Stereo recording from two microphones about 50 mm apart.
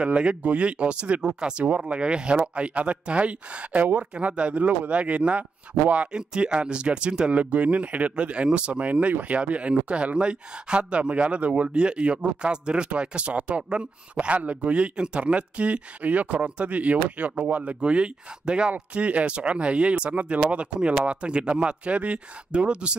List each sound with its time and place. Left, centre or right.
0.0 s speech: right